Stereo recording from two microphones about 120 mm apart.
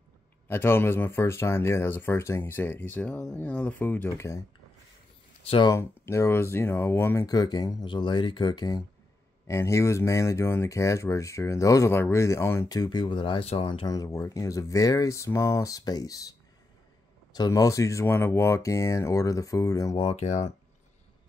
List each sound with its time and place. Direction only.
0.5 s speech: 20° left (ahead or behind)
5.7 s speech: 20° left (ahead or behind)
7.2 s speech: 35° left (ahead or behind)
9.5 s speech: 25° left (ahead or behind); by 13.7 s 50° left (ahead or behind)
13.8 s speech: 30° left (ahead or behind)
20.0 s speech: 55° left (ahead or behind)